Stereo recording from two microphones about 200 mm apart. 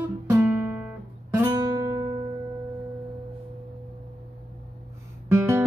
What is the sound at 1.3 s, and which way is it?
Guitar, 15° right (ahead or behind).